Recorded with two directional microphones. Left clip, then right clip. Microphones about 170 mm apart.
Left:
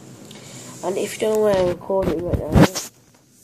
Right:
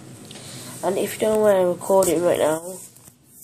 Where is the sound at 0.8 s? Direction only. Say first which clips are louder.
Right 1 dB; centre (ahead or behind).